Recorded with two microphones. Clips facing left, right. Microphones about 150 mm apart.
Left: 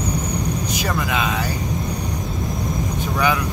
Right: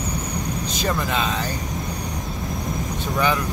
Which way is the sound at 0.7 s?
10° left (ahead or behind).